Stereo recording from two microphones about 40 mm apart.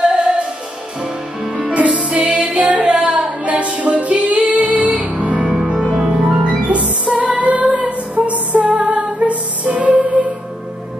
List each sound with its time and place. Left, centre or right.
0.1 s music: right
1.7 s music: right
7.2 s female singing: right
8.7 s music: right